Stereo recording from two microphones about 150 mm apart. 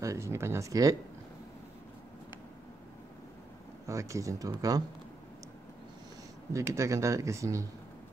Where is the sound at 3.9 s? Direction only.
20° right (ahead or behind).